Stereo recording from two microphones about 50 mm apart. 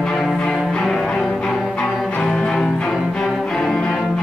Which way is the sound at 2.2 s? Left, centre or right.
Centre.